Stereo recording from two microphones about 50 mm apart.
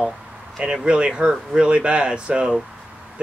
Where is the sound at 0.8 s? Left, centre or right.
Centre.